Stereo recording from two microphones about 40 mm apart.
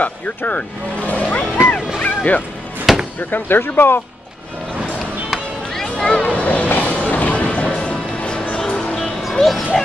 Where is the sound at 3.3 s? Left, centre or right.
Left.